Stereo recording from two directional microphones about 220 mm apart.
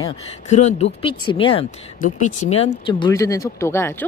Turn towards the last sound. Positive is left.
turn(degrees=10)  # may be behind; listen again after turning